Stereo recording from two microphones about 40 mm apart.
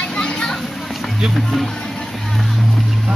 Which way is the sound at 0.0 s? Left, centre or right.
Centre.